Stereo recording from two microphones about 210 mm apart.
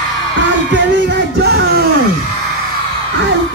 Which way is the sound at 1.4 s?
50° right (ahead or behind).